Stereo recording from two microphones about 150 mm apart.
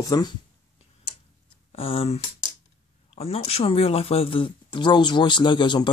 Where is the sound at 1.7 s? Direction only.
40° left (ahead or behind).